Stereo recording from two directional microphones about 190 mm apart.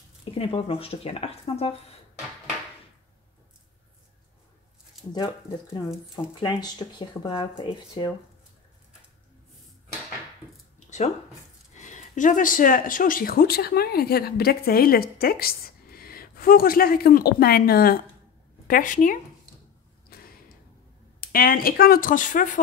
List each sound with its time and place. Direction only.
0.3 s speech: 30° left (ahead or behind)
5.1 s speech: 20° left (ahead or behind)
11.7 s speech: 40° left (ahead or behind)
20.1 s a sound: 55° left (ahead or behind)
21.2 s speech: 50° left (ahead or behind)